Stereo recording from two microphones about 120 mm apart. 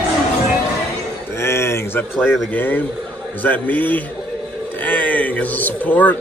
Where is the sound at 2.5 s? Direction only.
15° left (ahead or behind).